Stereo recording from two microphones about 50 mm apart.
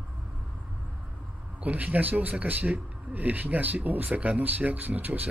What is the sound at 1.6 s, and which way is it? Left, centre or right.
Speech, right.